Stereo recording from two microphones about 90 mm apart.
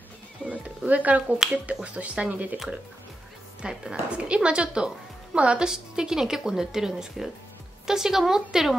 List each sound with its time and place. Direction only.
0.5 s music: 15° right (ahead or behind)
1.4 s a woman's voice: 10° right (ahead or behind)
3.6 s a woman's voice: 10° right (ahead or behind)